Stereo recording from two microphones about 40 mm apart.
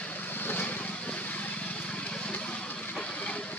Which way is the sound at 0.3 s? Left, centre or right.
Left.